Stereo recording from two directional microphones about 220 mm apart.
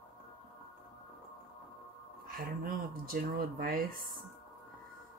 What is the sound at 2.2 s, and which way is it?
Speech, 40° right (ahead or behind).